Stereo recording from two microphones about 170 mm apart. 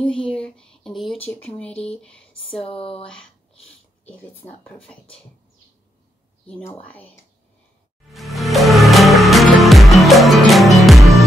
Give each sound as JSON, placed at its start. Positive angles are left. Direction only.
{"t": 0.0, "sound": "speech", "side_deg": 5}
{"t": 2.6, "sound": "speech", "side_deg": 35}
{"t": 6.4, "sound": "speech", "side_deg": 10}
{"t": 8.1, "sound": "music", "side_deg": 0}